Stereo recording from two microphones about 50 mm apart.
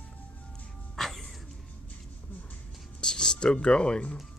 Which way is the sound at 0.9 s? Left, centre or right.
Centre.